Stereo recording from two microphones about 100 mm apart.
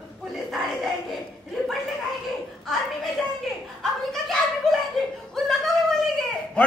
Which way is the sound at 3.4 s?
Centre (ahead or behind).